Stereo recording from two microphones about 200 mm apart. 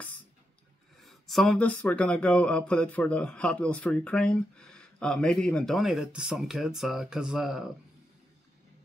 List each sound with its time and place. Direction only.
1.0 s speech: centre (ahead or behind)